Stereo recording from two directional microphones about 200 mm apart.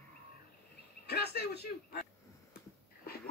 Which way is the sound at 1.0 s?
55° left (ahead or behind).